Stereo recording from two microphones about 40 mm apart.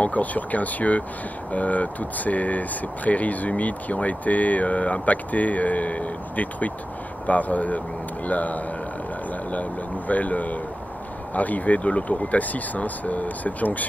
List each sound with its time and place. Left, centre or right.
0.0 s speech: left